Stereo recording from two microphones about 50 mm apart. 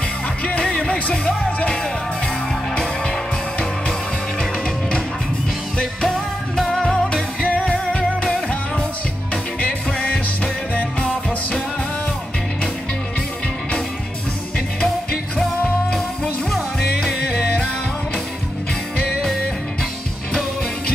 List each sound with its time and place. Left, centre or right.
0.4 s music: left
4.4 s music: centre
6.0 s music: centre
7.4 s music: left
9.3 s music: left